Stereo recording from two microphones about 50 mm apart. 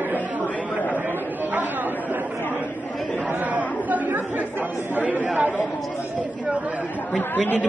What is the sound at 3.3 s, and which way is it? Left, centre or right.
Chatter, right.